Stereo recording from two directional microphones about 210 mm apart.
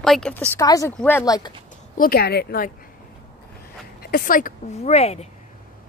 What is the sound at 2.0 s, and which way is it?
Speech, 45° left (ahead or behind).